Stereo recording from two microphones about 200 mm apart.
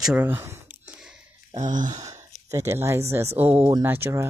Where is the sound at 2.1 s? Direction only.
15° right (ahead or behind).